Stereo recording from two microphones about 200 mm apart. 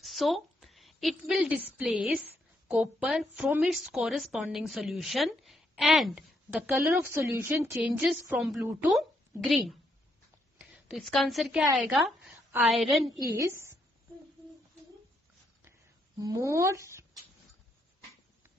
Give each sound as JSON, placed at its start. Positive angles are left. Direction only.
{"t": 0.0, "sound": "a woman's voice", "side_deg": 0}
{"t": 7.7, "sound": "a woman's voice", "side_deg": 0}
{"t": 13.4, "sound": "speech", "side_deg": -15}
{"t": 16.2, "sound": "speech", "side_deg": -15}